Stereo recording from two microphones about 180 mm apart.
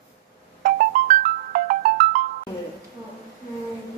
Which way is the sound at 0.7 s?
50° right (ahead or behind).